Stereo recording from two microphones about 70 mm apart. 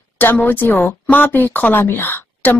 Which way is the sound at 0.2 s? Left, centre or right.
Left.